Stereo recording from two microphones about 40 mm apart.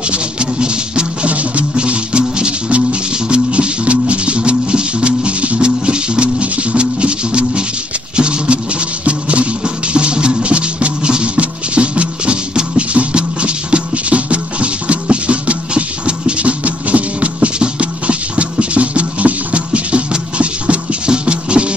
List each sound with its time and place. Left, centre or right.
0.1 s music: right
1.3 s music: right